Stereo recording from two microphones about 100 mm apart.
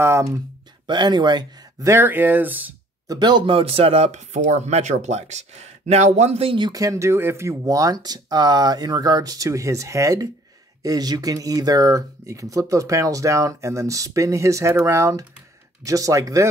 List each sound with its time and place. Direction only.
0.0 s speech: 30° right (ahead or behind)
0.8 s speech: 50° right (ahead or behind)
1.9 s speech: 25° right (ahead or behind)
3.1 s speech: 45° right (ahead or behind)
3.5 s speech: 70° right (ahead or behind)
6.6 s speech: 35° right (ahead or behind)